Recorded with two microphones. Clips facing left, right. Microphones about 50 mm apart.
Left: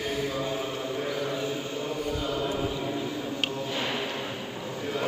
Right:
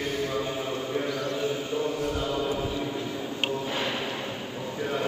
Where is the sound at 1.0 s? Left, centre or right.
Centre.